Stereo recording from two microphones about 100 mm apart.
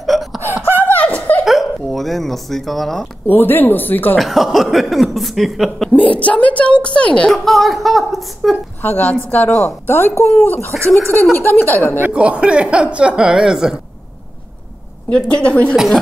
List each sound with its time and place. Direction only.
0.0 s a sound: centre (ahead or behind)
0.7 s a sound: 15° left (ahead or behind)
1.4 s speech: centre (ahead or behind)
3.3 s speech: 20° left (ahead or behind)
4.2 s speech: centre (ahead or behind)
5.9 s a woman's voice: 15° left (ahead or behind)
8.8 s a woman's voice: 15° left (ahead or behind)
10.9 s speech: centre (ahead or behind)
11.3 s speech: 20° left (ahead or behind)
12.0 s speech: 10° right (ahead or behind)
15.0 s a woman's voice: 10° left (ahead or behind)
15.7 s speech: 5° right (ahead or behind)